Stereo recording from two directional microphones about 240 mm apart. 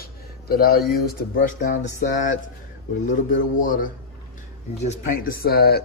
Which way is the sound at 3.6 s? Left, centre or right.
Left.